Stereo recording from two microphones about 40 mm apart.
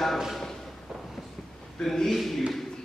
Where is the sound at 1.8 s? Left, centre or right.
Centre.